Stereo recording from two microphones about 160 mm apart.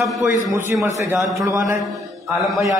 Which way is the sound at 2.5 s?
Centre (ahead or behind).